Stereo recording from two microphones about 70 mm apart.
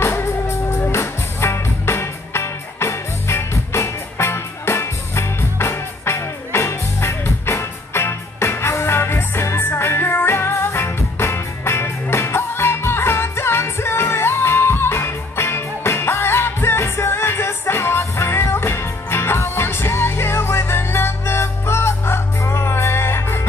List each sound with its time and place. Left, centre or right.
0.0 s music: left